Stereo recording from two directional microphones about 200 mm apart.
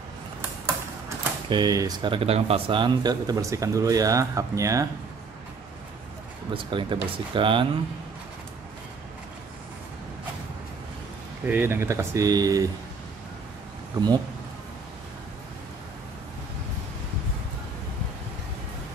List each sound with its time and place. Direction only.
1.0 s speech: 20° right (ahead or behind)
6.5 s speech: 25° right (ahead or behind)
11.4 s speech: 10° right (ahead or behind)